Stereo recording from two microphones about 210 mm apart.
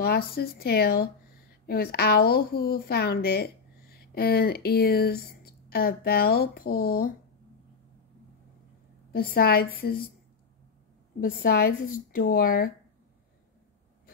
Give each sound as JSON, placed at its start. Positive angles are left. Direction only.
{"t": 0.0, "sound": "a woman's voice", "side_deg": 45}
{"t": 9.1, "sound": "a woman's voice", "side_deg": 45}
{"t": 11.1, "sound": "a woman's voice", "side_deg": 45}